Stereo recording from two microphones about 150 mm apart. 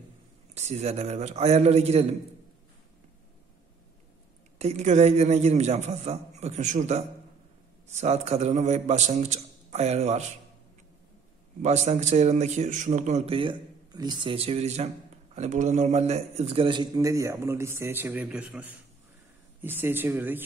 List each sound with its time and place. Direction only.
0.6 s a man's voice: 45° right (ahead or behind)
4.6 s a man's voice: 45° right (ahead or behind)
11.6 s a man's voice: 50° right (ahead or behind); by 20.4 s 15° right (ahead or behind)